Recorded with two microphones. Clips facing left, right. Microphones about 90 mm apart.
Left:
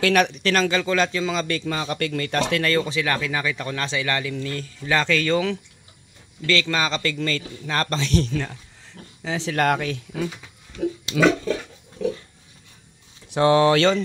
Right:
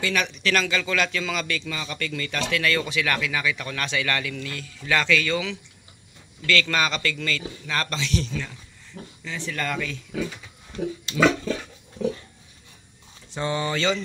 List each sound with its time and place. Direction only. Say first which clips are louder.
0.0 s speech: left 6 dB; 50° left (ahead or behind); by 1.5 s 25° left (ahead or behind)
1.5 s speech: left 5 dB; 45° left (ahead or behind)
2.7 s speech: left 3 dB; 30° left (ahead or behind)
6.4 s speech: left 1 dB; 25° left (ahead or behind); by 8.5 s 50° left (ahead or behind)
9.2 s speech: left 8 dB; 70° left (ahead or behind); by 10.2 s 55° left (ahead or behind)
13.3 s speech: left 10 dB; 75° left (ahead or behind)